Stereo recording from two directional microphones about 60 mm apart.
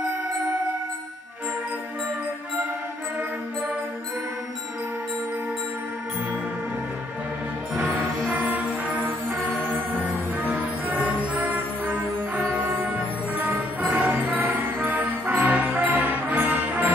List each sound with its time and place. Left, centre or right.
8.3 s music: right